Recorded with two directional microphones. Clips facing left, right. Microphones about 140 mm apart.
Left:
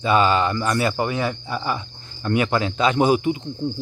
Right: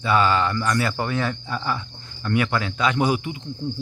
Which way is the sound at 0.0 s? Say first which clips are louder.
Left 2 dB; 20° left (ahead or behind).